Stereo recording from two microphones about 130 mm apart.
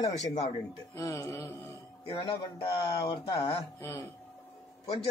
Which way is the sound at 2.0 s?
45° left (ahead or behind).